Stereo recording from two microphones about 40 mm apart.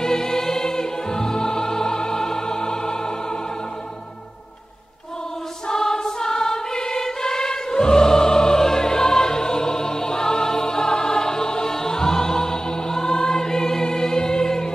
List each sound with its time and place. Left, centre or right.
0.0 s music: centre
5.7 s music: centre